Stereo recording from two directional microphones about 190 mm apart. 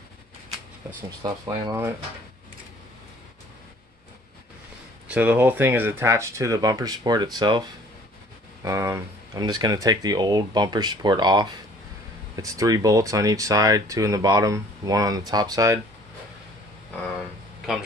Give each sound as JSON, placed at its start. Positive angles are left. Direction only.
{"t": 1.2, "sound": "speech", "side_deg": -15}
{"t": 5.0, "sound": "speech", "side_deg": -5}
{"t": 8.6, "sound": "speech", "side_deg": -15}